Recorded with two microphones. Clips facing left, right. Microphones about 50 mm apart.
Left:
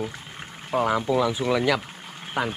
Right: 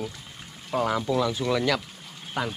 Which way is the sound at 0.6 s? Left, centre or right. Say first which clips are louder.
Left 3 dB; centre.